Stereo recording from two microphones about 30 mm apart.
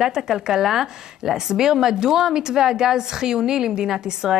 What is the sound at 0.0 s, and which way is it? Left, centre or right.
A woman's voice, centre.